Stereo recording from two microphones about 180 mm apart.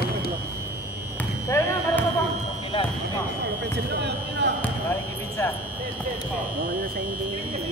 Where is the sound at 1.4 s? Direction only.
15° left (ahead or behind).